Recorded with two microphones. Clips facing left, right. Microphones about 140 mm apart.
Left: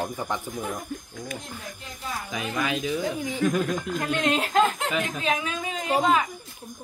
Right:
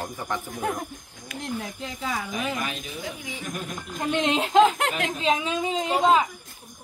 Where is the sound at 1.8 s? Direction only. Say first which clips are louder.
Right 4 dB; 90° right.